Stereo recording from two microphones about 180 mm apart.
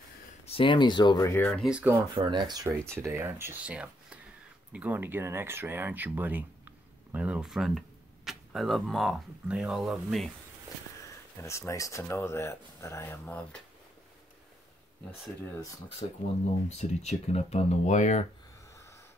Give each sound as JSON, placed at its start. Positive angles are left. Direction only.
{"t": 0.5, "sound": "speech", "side_deg": 30}
{"t": 1.7, "sound": "speech", "side_deg": -5}
{"t": 2.1, "sound": "speech", "side_deg": -25}
{"t": 11.4, "sound": "speech", "side_deg": 15}
{"t": 16.6, "sound": "speech", "side_deg": 40}